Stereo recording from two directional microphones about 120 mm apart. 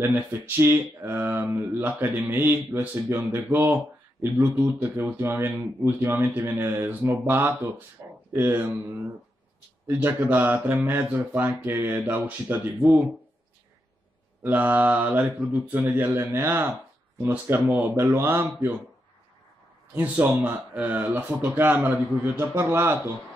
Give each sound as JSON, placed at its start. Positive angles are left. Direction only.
{"t": 0.0, "sound": "speech", "side_deg": -15}
{"t": 14.4, "sound": "speech", "side_deg": -15}
{"t": 19.9, "sound": "speech", "side_deg": -15}